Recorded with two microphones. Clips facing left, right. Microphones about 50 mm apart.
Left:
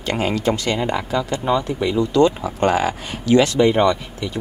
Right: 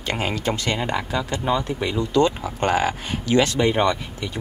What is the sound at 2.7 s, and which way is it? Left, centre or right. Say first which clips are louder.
Speech: left 1 dB; right.